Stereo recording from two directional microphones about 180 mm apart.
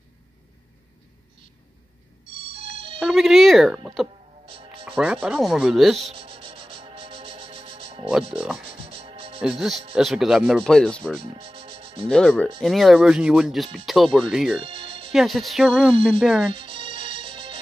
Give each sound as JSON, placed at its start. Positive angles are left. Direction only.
{"t": 2.2, "sound": "music", "side_deg": -30}
{"t": 3.0, "sound": "speech", "side_deg": 0}
{"t": 4.5, "sound": "music", "side_deg": -30}
{"t": 4.8, "sound": "speech", "side_deg": -5}
{"t": 5.9, "sound": "music", "side_deg": -30}
{"t": 8.4, "sound": "speech", "side_deg": -5}
{"t": 8.7, "sound": "music", "side_deg": -30}
{"t": 9.4, "sound": "speech", "side_deg": -5}
{"t": 11.2, "sound": "music", "side_deg": -30}
{"t": 12.1, "sound": "speech", "side_deg": 5}
{"t": 14.6, "sound": "music", "side_deg": -30}
{"t": 15.1, "sound": "speech", "side_deg": 0}
{"t": 16.5, "sound": "music", "side_deg": -30}